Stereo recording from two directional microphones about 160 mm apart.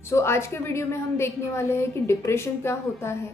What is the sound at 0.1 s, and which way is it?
A woman's voice, 15° left (ahead or behind).